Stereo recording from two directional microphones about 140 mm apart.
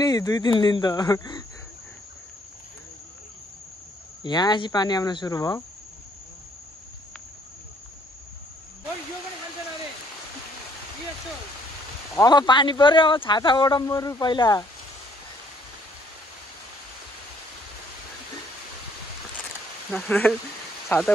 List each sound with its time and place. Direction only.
0.0 s speech: 25° left (ahead or behind)
4.2 s speech: 30° left (ahead or behind)
12.2 s speech: 30° left (ahead or behind)
19.9 s speech: 10° left (ahead or behind)